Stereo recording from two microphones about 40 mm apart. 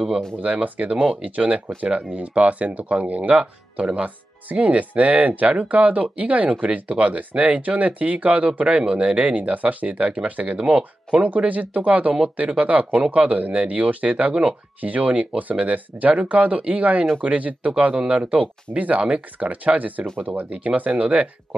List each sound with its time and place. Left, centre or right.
0.4 s speech: right
5.5 s speech: right
9.4 s speech: right
10.6 s speech: right
11.2 s speech: right
20.2 s speech: right
20.5 s speech: right